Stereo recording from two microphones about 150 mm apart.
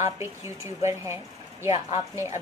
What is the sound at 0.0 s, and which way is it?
A woman's voice, 15° right (ahead or behind).